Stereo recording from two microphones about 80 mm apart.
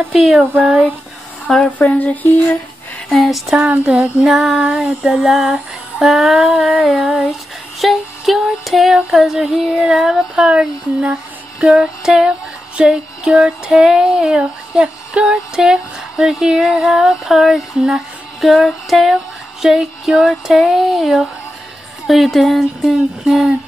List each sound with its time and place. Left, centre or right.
0.1 s music: centre
0.6 s music: centre
1.7 s a sound: centre
3.1 s music: centre
3.5 s music: centre
4.3 s music: centre